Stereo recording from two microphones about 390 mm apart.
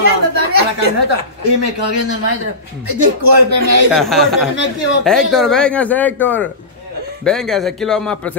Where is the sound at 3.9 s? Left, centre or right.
Centre.